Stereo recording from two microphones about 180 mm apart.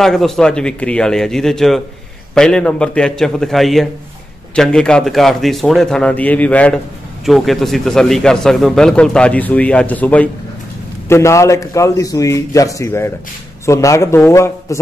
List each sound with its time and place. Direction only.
0.0 s a man's voice: centre (ahead or behind)